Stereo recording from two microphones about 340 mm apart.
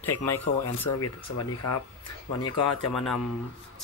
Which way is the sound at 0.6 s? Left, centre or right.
Left.